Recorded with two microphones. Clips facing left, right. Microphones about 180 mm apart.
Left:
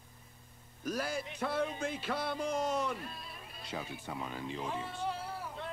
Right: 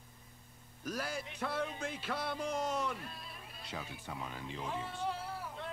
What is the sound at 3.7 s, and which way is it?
Speech, 20° left (ahead or behind).